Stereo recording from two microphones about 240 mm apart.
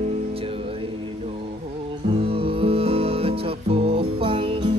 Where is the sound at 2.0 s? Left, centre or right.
Right.